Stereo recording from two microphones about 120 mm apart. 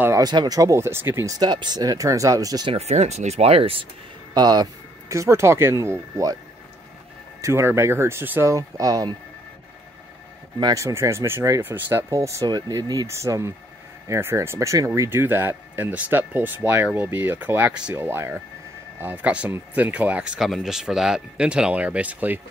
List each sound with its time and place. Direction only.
0.2 s speech: 35° right (ahead or behind)
1.4 s speech: 35° right (ahead or behind)
2.7 s speech: 65° right (ahead or behind)
4.3 s speech: 35° right (ahead or behind)
5.1 s speech: 25° right (ahead or behind)
7.4 s speech: 20° right (ahead or behind)
10.6 s speech: 25° right (ahead or behind)